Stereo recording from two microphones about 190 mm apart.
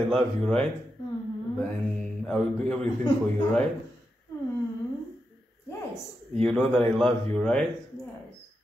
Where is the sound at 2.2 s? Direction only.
5° left (ahead or behind).